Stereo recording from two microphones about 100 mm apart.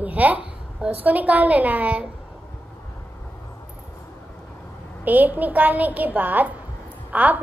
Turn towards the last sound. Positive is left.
turn(degrees=-15)  # may be behind; listen again after turning